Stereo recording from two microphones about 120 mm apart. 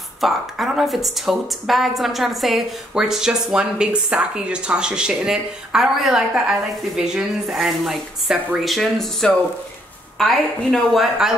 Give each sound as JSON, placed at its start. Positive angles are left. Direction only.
{"t": 0.2, "sound": "a woman's voice", "side_deg": 0}